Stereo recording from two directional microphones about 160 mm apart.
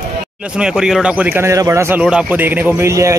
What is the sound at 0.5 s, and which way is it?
Speech, 5° right (ahead or behind).